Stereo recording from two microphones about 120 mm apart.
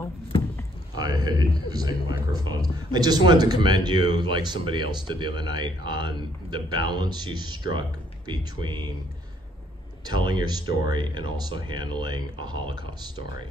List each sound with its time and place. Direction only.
0.9 s speech: 35° right (ahead or behind)
10.0 s speech: 40° right (ahead or behind)